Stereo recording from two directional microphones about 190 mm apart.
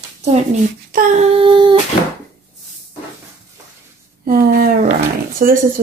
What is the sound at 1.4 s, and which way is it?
Humming, 25° right (ahead or behind).